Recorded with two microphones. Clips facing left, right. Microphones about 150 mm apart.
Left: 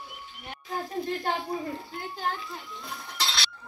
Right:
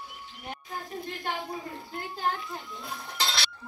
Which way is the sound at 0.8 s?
45° left (ahead or behind).